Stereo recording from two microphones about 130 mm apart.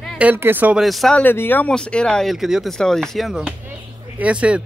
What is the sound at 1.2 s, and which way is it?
Speech, 15° left (ahead or behind).